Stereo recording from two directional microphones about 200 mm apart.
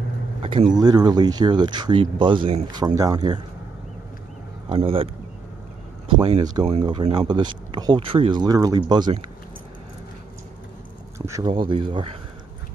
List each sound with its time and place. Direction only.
0.4 s speech: 25° right (ahead or behind)
4.6 s speech: 25° right (ahead or behind)
11.1 s a sound: 15° right (ahead or behind)
11.7 s speech: 25° right (ahead or behind)